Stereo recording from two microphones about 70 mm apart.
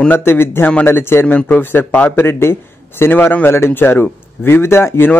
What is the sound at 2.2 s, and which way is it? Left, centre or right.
A man's voice, left.